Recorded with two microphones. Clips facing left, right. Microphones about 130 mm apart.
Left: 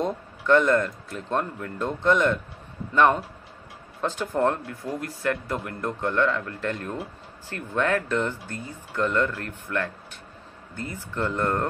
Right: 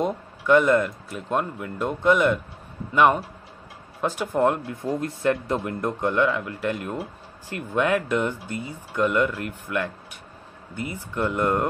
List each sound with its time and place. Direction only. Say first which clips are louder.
0.0 s a man's voice: right 2 dB; 10° right (ahead or behind)
4.8 s speech: right 4 dB; 25° right (ahead or behind)